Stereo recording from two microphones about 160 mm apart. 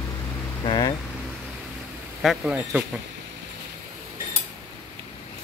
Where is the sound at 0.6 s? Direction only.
25° left (ahead or behind).